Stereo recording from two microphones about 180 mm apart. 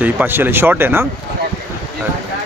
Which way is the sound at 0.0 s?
10° right (ahead or behind).